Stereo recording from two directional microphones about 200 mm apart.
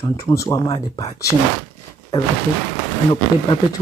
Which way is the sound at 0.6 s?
25° left (ahead or behind).